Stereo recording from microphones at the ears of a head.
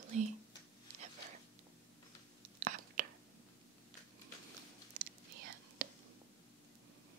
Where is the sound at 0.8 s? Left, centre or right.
Right.